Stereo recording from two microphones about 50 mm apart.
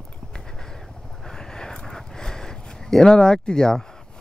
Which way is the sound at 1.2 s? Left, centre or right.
Centre.